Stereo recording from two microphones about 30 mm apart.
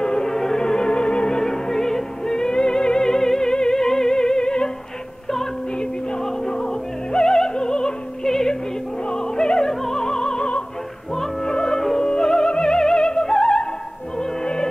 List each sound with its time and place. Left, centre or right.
0.0 s music: left
1.3 s music: centre
6.2 s music: left
11.4 s music: left
14.1 s opera: left